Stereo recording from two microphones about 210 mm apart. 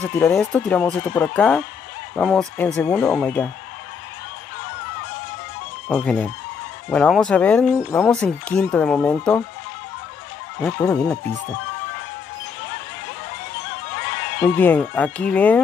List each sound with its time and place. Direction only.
0.2 s speech: 5° left (ahead or behind)
5.9 s speech: 5° left (ahead or behind)
10.6 s speech: 5° left (ahead or behind)
13.9 s a sound: 60° left (ahead or behind)
14.4 s speech: 10° left (ahead or behind)